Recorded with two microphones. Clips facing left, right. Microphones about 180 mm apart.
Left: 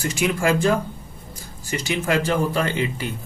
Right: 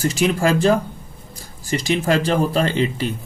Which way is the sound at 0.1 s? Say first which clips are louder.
Right 3 dB; 35° right (ahead or behind).